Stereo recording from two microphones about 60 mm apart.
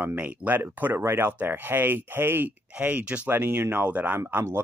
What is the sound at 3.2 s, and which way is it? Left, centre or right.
Speech, right.